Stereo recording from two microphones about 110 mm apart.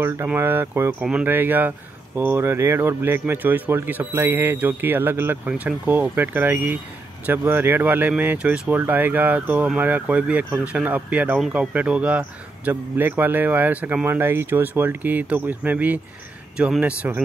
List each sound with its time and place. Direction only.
0.0 s speech: 20° right (ahead or behind)